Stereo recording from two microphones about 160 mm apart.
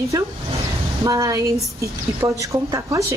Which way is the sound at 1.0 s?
20° right (ahead or behind).